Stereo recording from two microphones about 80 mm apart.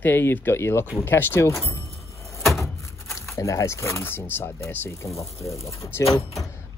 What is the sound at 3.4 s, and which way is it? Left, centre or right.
A man's voice, left.